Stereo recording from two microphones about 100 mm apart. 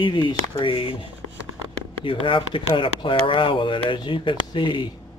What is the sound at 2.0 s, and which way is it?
Speech, 60° left (ahead or behind).